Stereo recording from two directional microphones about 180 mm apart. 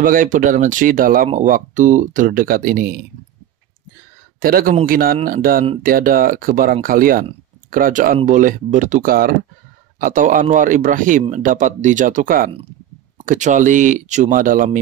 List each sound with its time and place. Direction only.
0.0 s speech: 50° right (ahead or behind)
4.4 s speech: 55° right (ahead or behind)